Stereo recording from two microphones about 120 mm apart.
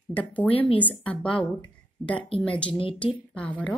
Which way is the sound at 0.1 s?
10° left (ahead or behind).